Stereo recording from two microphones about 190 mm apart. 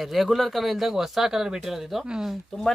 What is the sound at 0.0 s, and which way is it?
A man's voice, centre (ahead or behind).